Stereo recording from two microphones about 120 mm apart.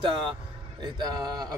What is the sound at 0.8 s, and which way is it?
Speech, 35° right (ahead or behind).